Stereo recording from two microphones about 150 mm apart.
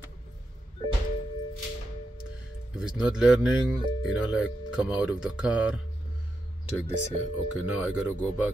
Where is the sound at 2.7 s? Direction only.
5° right (ahead or behind).